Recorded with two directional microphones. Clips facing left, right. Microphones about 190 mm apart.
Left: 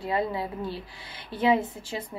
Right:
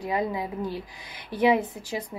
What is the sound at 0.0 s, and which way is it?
A woman's voice, 15° right (ahead or behind).